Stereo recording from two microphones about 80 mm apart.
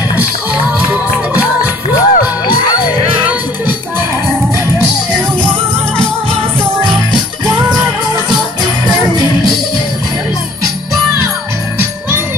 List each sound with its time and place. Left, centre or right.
2.0 s music: left
9.0 s music: right